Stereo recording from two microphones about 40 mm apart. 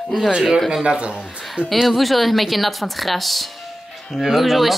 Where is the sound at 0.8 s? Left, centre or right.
Right.